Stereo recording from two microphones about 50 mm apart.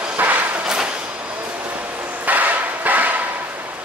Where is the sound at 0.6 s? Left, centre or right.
Centre.